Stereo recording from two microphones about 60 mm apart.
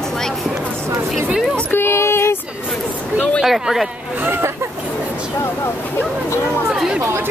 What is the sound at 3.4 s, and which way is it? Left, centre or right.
Speech, centre.